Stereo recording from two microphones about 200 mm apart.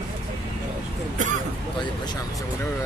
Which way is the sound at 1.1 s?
40° right (ahead or behind).